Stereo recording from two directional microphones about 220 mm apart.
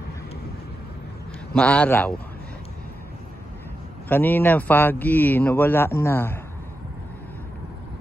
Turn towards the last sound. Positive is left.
turn(degrees=10)  # may be behind; listen again after turning